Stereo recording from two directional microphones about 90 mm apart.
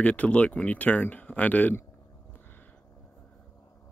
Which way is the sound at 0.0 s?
15° left (ahead or behind).